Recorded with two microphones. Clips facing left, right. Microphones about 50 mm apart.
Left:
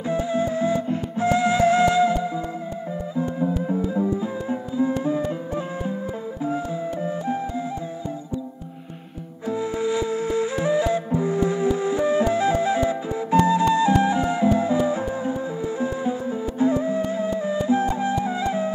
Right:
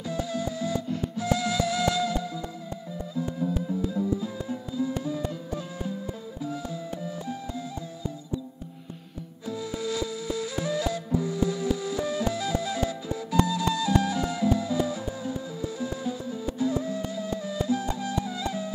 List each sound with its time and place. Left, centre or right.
0.1 s music: left
6.4 s music: left
9.5 s flute: left
11.1 s music: left